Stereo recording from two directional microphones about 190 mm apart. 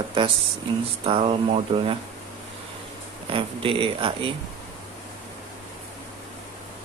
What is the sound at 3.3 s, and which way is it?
Speech, 30° right (ahead or behind).